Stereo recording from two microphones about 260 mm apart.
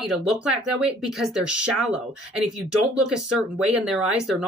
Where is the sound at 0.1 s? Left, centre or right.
Centre.